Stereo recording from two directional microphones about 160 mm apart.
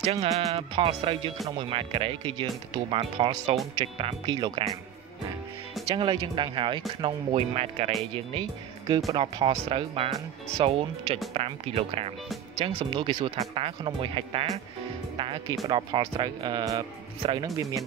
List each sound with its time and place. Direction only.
0.0 s speech: 40° right (ahead or behind)
5.9 s speech: 30° right (ahead or behind)
15.1 s music: 35° right (ahead or behind)
15.6 s speech: 30° right (ahead or behind)